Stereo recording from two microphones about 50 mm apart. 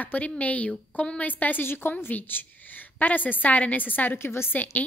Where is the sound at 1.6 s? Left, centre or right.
Left.